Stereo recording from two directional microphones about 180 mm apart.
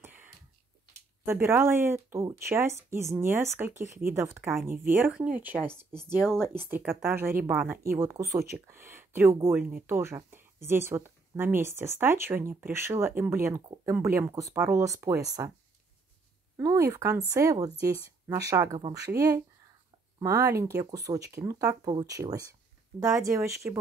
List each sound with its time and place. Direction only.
0.0 s a sound: 10° right (ahead or behind)
1.2 s speech: 15° right (ahead or behind)
6.2 s speech: 5° left (ahead or behind); by 15.5 s 20° right (ahead or behind)
16.5 s speech: 15° right (ahead or behind)